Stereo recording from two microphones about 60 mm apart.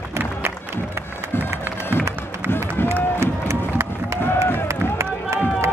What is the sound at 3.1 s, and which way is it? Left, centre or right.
Run, right.